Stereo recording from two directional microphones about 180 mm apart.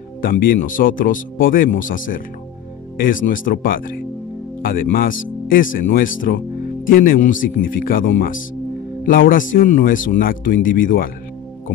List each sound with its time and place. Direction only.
0.2 s speech: 50° left (ahead or behind)